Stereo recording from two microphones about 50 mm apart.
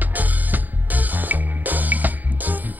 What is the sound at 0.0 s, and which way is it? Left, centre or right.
Music, right.